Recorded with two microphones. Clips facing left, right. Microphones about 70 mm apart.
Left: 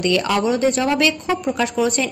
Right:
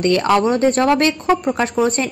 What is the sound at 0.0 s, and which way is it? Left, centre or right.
Speech, right.